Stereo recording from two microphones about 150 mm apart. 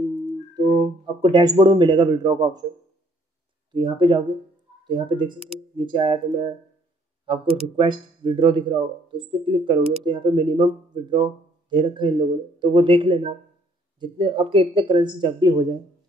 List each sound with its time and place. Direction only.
0.6 s a man's voice: 30° right (ahead or behind)
3.7 s speech: 35° right (ahead or behind)